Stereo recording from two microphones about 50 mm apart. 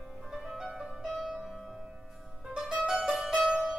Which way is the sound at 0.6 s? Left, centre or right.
Centre.